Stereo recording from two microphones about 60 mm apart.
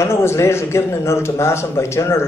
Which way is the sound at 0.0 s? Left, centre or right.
Left.